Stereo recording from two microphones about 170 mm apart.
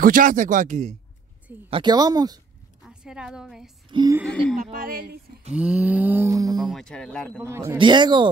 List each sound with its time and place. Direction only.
0.0 s speech: 55° right (ahead or behind)
1.7 s speech: 25° right (ahead or behind)
2.8 s a woman's voice: 5° right (ahead or behind)
3.9 s speech: 25° right (ahead or behind)
4.7 s a woman's voice: 55° right (ahead or behind)
5.5 s mantra: 5° right (ahead or behind)
6.6 s speech: centre (ahead or behind)
7.4 s mantra: 15° right (ahead or behind)
7.7 s speech: 25° right (ahead or behind)